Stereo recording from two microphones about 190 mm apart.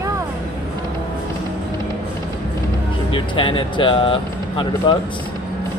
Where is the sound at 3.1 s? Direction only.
25° left (ahead or behind).